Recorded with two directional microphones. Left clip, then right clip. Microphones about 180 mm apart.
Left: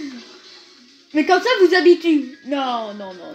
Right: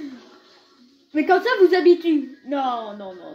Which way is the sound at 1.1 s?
30° left (ahead or behind).